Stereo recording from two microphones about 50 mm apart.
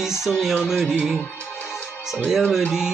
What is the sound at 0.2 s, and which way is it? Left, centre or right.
Music, centre.